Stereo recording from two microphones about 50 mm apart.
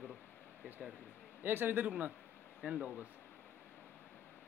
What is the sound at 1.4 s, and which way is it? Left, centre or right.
Speech, right.